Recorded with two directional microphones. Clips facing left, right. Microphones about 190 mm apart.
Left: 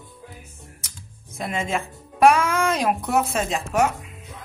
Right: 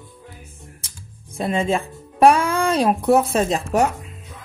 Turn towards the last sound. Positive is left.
turn(degrees=-35)  # may be behind; listen again after turning